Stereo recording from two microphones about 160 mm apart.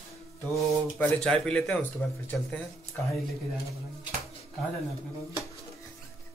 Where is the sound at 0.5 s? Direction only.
5° left (ahead or behind).